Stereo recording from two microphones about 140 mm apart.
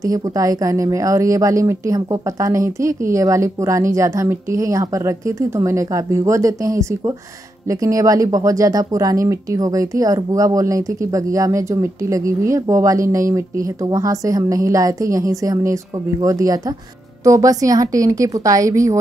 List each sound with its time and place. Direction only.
0.0 s speech: 25° right (ahead or behind)